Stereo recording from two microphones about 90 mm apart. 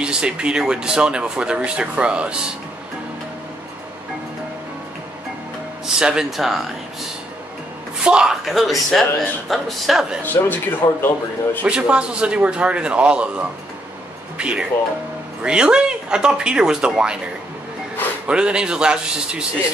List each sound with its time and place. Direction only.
0.0 s speech: 10° right (ahead or behind)
5.9 s speech: 10° right (ahead or behind)
8.0 s speech: 10° right (ahead or behind)
10.2 s speech: 20° left (ahead or behind)
11.6 s speech: 10° right (ahead or behind)
18.2 s speech: 10° right (ahead or behind)